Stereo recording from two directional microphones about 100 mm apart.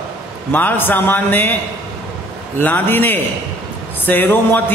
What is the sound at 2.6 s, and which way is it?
A man's voice, 20° left (ahead or behind).